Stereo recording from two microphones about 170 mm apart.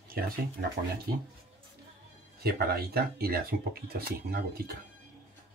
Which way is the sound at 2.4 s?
65° right (ahead or behind).